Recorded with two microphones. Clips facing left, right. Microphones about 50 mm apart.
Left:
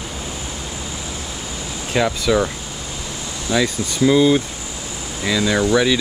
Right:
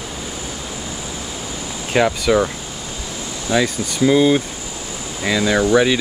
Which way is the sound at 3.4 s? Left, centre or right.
Right.